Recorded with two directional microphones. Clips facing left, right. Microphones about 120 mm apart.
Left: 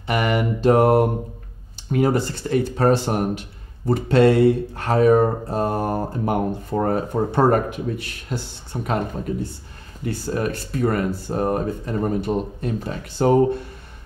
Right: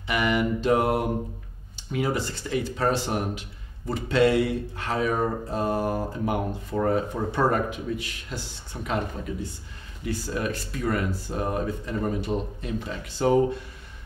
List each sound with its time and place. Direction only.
0.0 s speech: 50° left (ahead or behind)